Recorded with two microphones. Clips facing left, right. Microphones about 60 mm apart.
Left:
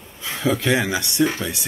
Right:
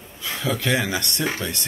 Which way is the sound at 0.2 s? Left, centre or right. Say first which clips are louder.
Left 4 dB; left.